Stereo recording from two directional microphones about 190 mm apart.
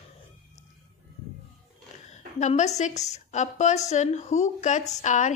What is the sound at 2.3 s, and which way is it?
Speech, 40° left (ahead or behind).